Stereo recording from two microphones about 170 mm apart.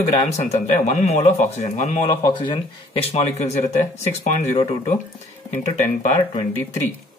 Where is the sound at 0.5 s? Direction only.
40° left (ahead or behind).